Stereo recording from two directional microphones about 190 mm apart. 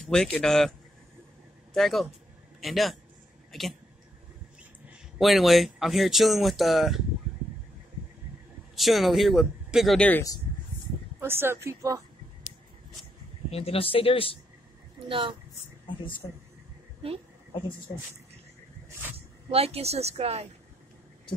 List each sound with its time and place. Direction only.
0.0 s speech: 5° left (ahead or behind)
5.2 s speech: centre (ahead or behind)
8.7 s speech: centre (ahead or behind)
11.1 s speech: 10° right (ahead or behind)
13.5 s speech: 30° left (ahead or behind)
15.0 s speech: 25° right (ahead or behind)
19.5 s a woman's voice: 30° right (ahead or behind)